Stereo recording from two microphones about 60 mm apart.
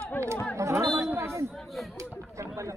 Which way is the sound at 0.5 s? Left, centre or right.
Right.